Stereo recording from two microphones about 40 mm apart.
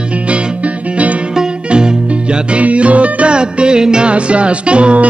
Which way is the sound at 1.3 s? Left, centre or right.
Right.